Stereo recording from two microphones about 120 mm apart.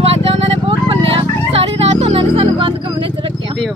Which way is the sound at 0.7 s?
50° right (ahead or behind).